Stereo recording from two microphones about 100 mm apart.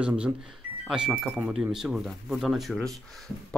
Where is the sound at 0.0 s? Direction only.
10° right (ahead or behind).